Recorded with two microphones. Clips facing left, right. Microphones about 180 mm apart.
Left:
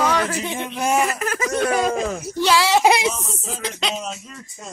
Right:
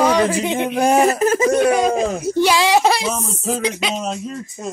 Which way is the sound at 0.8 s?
35° right (ahead or behind).